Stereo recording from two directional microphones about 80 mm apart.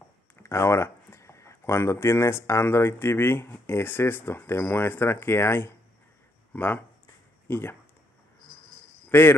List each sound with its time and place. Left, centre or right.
0.4 s speech: left
9.1 s speech: left